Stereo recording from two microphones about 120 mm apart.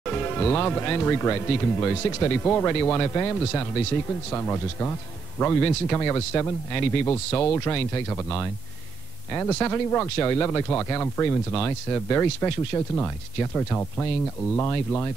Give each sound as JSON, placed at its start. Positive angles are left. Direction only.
{"t": 0.0, "sound": "speech", "side_deg": 15}